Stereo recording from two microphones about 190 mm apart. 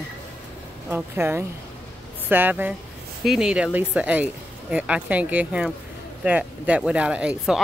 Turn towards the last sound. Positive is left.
turn(degrees=-5)  # may be behind; listen again after turning